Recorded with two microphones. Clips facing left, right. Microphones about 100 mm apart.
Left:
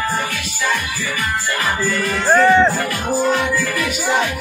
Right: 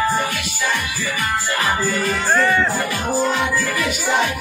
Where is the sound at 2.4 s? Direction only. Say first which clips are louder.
Left 7 dB; 20° left (ahead or behind).